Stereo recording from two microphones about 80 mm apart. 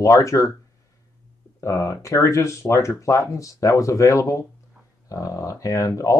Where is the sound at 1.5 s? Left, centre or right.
Left.